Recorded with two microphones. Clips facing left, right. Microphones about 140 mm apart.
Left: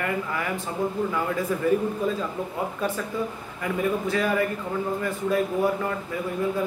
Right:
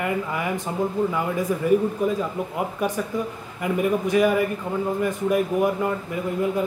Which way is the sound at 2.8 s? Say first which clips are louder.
Right 3 dB; 15° right (ahead or behind).